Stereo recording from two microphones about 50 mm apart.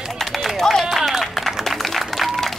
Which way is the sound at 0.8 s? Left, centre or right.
Centre.